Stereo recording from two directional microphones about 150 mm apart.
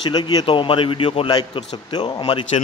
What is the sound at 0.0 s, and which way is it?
A man's voice, 30° left (ahead or behind).